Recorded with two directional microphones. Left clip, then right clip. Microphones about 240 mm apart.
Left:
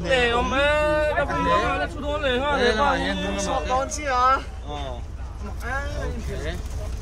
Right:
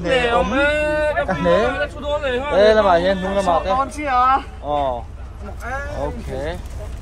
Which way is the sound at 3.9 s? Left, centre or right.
Right.